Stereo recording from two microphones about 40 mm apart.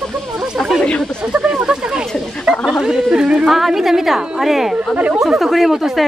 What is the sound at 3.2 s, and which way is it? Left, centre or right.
Speech, right.